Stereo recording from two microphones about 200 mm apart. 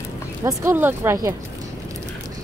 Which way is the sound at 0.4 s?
15° right (ahead or behind).